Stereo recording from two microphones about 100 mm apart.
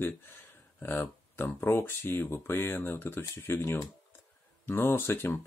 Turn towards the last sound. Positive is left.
turn(degrees=25)  # may be behind; listen again after turning